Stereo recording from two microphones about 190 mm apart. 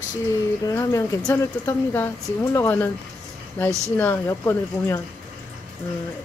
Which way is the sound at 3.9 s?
10° left (ahead or behind).